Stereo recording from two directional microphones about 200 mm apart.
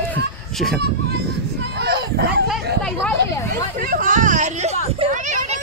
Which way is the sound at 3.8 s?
45° right (ahead or behind).